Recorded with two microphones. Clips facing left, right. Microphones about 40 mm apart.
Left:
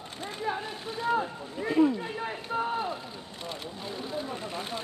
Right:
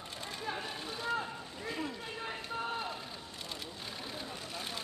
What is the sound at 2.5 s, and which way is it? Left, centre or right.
Run, centre.